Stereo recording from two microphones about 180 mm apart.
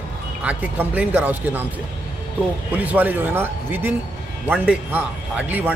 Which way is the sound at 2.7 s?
10° right (ahead or behind).